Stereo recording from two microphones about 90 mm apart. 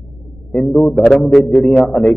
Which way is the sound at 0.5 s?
Centre (ahead or behind).